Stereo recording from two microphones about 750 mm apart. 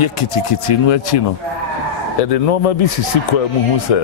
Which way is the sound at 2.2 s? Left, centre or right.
Left.